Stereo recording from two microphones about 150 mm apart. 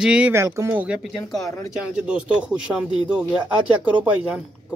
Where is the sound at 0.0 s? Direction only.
5° right (ahead or behind).